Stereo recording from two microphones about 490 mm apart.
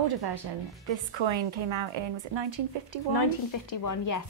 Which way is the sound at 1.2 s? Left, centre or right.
Right.